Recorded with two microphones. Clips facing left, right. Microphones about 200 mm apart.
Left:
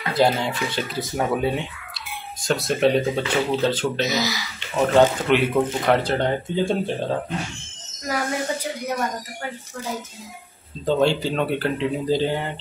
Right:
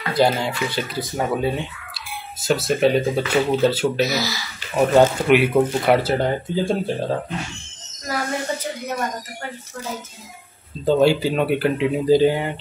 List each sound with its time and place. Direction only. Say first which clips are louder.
0.1 s speech: right 1 dB; centre (ahead or behind)
4.0 s speech: right 2 dB; 20° left (ahead or behind)
4.7 s speech: right 2 dB; 10° right (ahead or behind)
8.1 s a sound: even; 15° left (ahead or behind)
10.9 s speech: right 3 dB; 10° right (ahead or behind)